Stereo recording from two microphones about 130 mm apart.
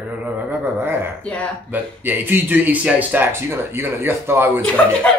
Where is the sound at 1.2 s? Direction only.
10° left (ahead or behind).